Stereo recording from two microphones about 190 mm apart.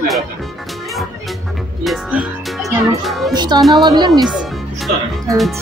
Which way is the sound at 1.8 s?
5° right (ahead or behind).